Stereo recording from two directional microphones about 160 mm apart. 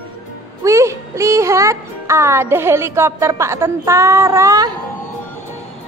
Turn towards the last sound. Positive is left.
turn(degrees=-20)  # may be behind; listen again after turning